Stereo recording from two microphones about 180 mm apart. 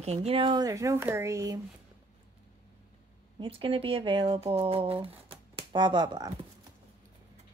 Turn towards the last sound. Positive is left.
turn(degrees=-25)  # may be behind; listen again after turning